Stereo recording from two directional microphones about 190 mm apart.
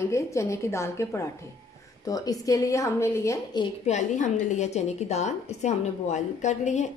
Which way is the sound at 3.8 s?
40° left (ahead or behind).